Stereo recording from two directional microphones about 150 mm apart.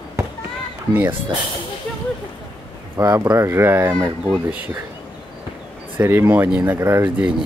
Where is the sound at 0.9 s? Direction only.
15° right (ahead or behind).